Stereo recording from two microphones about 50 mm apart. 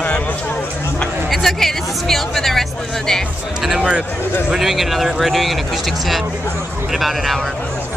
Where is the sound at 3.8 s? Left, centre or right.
Right.